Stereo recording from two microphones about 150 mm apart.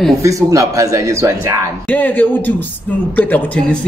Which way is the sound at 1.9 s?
10° left (ahead or behind).